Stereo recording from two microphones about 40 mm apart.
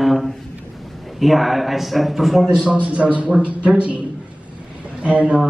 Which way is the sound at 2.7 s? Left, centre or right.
Right.